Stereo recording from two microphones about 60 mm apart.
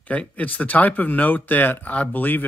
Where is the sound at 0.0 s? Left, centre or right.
Left.